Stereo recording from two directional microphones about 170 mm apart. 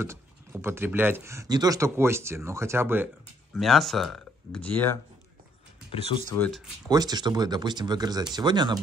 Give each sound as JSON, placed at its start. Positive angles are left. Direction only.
{"t": 0.0, "sound": "speech", "side_deg": -15}
{"t": 3.5, "sound": "speech", "side_deg": 0}
{"t": 5.9, "sound": "speech", "side_deg": 35}
{"t": 6.3, "sound": "speech", "side_deg": 10}
{"t": 6.9, "sound": "speech", "side_deg": -25}